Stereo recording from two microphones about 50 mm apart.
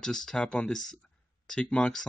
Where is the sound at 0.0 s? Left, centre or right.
Centre.